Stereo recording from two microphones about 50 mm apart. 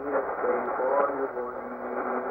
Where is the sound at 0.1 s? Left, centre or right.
Centre.